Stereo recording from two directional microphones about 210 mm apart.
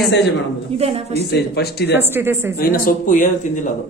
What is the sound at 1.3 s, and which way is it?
Speech, 50° left (ahead or behind).